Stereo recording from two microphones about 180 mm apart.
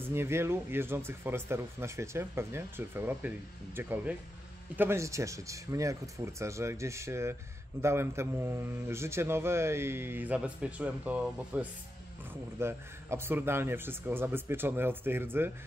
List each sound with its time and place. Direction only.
0.0 s speech: 15° right (ahead or behind)